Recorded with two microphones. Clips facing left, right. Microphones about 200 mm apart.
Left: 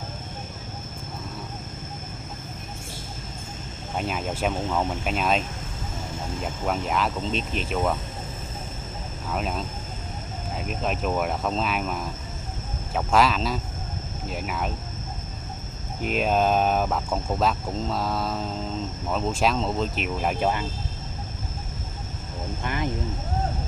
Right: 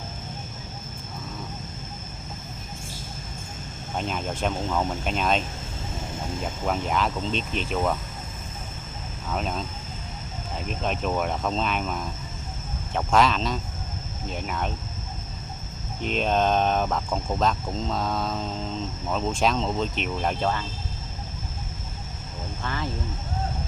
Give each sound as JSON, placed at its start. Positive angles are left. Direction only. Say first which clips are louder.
{"t": 4.0, "sound": "speech", "louder": "left 1 dB", "side_deg": 5}
{"t": 6.6, "sound": "speech", "louder": "even", "side_deg": 0}
{"t": 9.3, "sound": "speech", "louder": "even", "side_deg": 5}
{"t": 16.0, "sound": "speech", "louder": "left 1 dB", "side_deg": 5}
{"t": 22.6, "sound": "speech", "louder": "left 2 dB", "side_deg": 15}